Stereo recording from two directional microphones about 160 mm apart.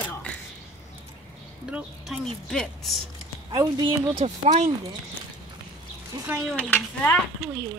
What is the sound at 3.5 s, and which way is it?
Speech, 25° right (ahead or behind).